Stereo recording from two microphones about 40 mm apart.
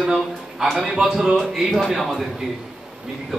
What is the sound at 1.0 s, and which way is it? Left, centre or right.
A man's voice, centre.